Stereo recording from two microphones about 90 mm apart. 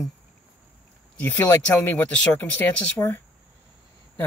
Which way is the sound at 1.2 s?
25° left (ahead or behind).